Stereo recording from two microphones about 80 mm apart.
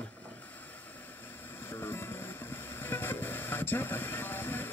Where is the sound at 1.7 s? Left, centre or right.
Left.